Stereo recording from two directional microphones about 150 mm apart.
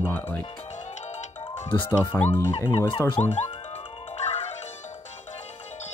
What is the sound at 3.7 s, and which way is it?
Music, 40° left (ahead or behind).